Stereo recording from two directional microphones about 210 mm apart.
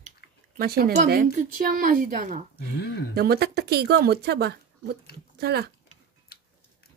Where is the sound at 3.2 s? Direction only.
50° right (ahead or behind).